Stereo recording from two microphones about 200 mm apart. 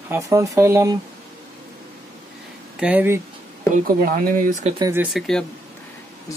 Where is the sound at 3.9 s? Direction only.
45° right (ahead or behind).